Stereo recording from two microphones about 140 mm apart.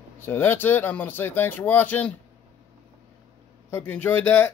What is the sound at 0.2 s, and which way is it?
Speech, 15° left (ahead or behind).